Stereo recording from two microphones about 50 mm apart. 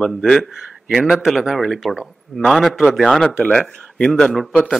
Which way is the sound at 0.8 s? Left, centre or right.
Centre.